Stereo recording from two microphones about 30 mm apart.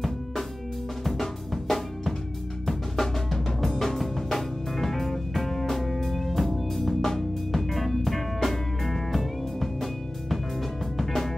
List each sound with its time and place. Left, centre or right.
1.0 s drum: centre
3.9 s music: centre
11.0 s music: centre